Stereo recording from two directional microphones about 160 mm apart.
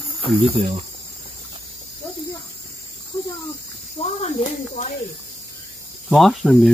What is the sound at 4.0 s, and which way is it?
Speech, 40° left (ahead or behind).